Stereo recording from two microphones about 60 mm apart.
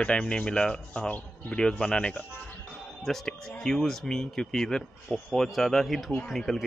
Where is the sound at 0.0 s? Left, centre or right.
Centre.